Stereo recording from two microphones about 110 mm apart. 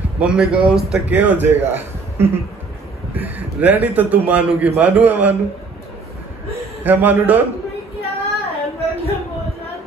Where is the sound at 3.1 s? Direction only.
15° right (ahead or behind).